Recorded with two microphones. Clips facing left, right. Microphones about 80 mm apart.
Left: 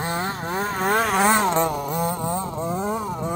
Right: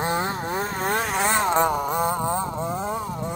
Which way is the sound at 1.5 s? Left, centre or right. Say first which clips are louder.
Right 1 dB; centre.